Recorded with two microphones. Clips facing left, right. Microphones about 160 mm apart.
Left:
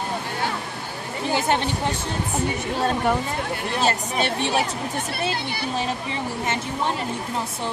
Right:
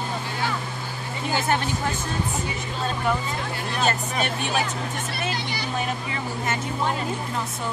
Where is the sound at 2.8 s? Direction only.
50° left (ahead or behind).